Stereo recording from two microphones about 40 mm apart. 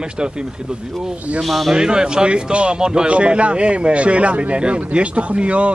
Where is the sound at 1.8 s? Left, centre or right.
Right.